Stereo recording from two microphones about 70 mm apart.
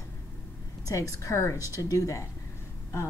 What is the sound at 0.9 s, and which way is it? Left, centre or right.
A woman's voice, left.